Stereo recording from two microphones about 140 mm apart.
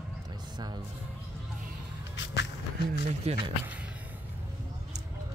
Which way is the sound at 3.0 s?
50° right (ahead or behind).